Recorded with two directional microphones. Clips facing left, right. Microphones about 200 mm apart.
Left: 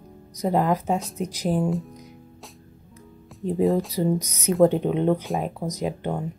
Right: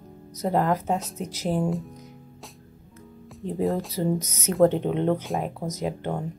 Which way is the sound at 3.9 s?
15° left (ahead or behind).